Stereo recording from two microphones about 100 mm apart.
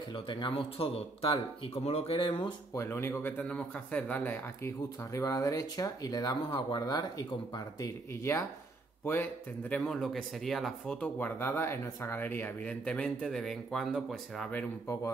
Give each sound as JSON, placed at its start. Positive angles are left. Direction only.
{"t": 0.1, "sound": "speech", "side_deg": 55}
{"t": 2.2, "sound": "speech", "side_deg": 60}
{"t": 2.7, "sound": "speech", "side_deg": 25}
{"t": 4.6, "sound": "speech", "side_deg": 35}
{"t": 8.1, "sound": "speech", "side_deg": 30}
{"t": 9.8, "sound": "speech", "side_deg": 5}
{"t": 11.1, "sound": "speech", "side_deg": 20}